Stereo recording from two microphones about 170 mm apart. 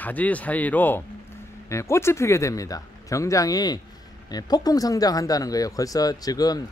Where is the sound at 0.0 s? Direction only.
10° left (ahead or behind).